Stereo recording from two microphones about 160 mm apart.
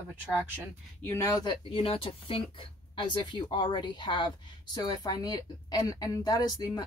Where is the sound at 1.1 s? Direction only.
20° left (ahead or behind).